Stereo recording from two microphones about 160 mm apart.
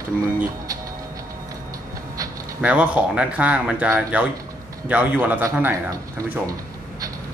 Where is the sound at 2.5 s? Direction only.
10° right (ahead or behind).